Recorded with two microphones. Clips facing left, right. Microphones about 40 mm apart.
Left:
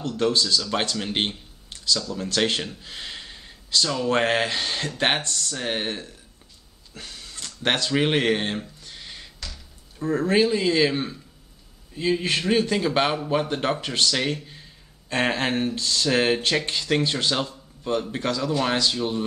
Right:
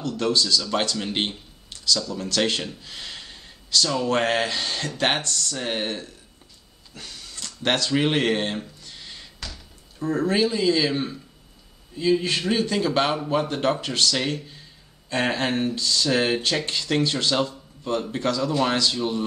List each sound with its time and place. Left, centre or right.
0.2 s speech: left
0.6 s speech: centre
2.8 s gasp: centre
4.1 s speech: centre
7.0 s a sound: centre
9.9 s speech: centre
10.2 s speech: centre
12.0 s speech: left
14.1 s speech: centre
15.7 s speech: left
16.1 s speech: centre
17.4 s a sound: centre
18.1 s speech: centre
18.5 s speech: centre